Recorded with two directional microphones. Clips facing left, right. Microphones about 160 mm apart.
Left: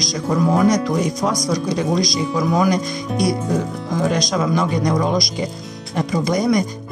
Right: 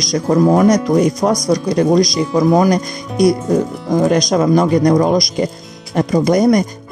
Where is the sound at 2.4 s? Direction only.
40° right (ahead or behind).